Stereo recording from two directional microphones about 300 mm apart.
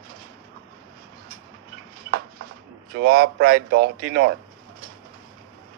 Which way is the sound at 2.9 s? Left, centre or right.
Right.